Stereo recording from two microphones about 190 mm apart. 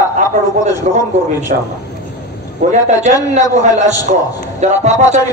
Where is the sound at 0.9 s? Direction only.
35° right (ahead or behind).